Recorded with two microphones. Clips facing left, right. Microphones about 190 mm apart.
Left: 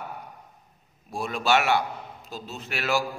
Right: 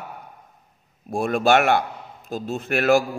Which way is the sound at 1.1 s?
50° right (ahead or behind).